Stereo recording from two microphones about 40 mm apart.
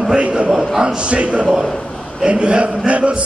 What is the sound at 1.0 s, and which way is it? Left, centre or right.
Speech, right.